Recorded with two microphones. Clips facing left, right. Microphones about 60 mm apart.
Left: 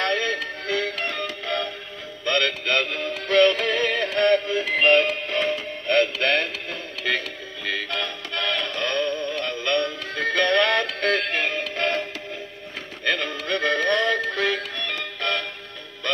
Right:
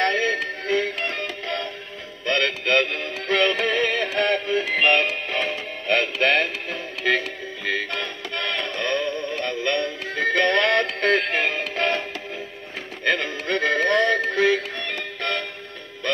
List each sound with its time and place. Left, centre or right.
0.0 s music: right
1.4 s music: centre
7.6 s music: right
9.3 s synthetic singing: right
10.1 s music: right